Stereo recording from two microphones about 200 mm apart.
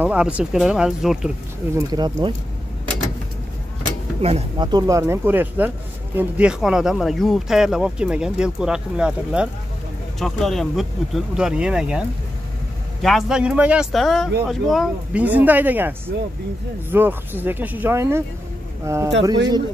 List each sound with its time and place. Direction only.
0.0 s speech: 5° right (ahead or behind)
1.8 s speech: 20° right (ahead or behind)
4.2 s speech: 30° right (ahead or behind); by 12.0 s 5° right (ahead or behind)
13.0 s speech: centre (ahead or behind)
16.9 s speech: 10° right (ahead or behind)